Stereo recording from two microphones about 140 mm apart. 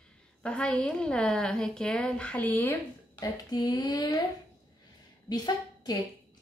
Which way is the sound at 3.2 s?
25° left (ahead or behind).